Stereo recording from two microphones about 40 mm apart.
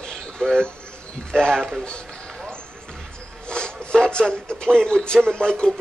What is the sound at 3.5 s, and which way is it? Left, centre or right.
Speech, left.